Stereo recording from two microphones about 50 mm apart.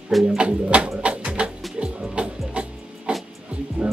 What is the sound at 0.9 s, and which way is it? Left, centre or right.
Music, right.